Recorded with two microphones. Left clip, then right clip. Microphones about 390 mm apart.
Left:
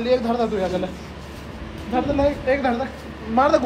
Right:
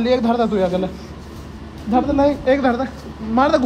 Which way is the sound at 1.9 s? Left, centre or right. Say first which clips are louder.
Right 4 dB; right.